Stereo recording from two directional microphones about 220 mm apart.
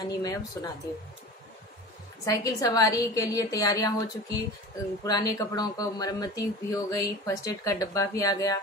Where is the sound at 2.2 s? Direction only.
15° left (ahead or behind).